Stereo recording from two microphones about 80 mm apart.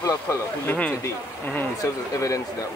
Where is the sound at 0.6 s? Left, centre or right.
Left.